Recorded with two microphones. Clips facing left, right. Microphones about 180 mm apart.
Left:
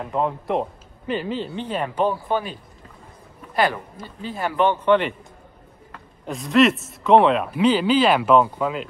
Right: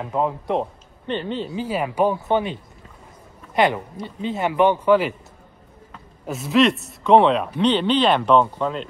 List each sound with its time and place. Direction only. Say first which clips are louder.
0.0 s a man's voice: right 1 dB; centre (ahead or behind)
2.1 s speech: right 3 dB; 25° right (ahead or behind)
4.0 s a man's voice: right 4 dB; 20° right (ahead or behind); by 8.8 s 5° left (ahead or behind)